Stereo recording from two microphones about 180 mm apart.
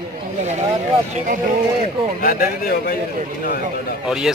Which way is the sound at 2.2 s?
55° left (ahead or behind).